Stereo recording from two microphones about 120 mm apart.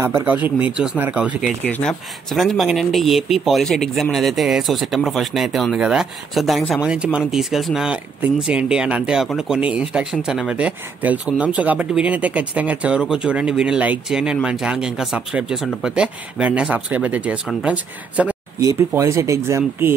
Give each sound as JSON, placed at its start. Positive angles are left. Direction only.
{"t": 0.0, "sound": "speech", "side_deg": -15}
{"t": 1.6, "sound": "speech", "side_deg": 10}
{"t": 18.6, "sound": "speech", "side_deg": -25}